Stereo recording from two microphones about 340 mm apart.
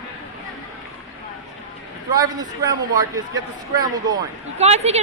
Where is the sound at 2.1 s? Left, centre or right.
Centre.